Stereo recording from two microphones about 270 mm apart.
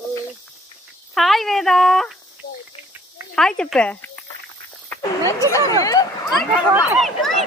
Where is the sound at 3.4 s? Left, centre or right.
Centre.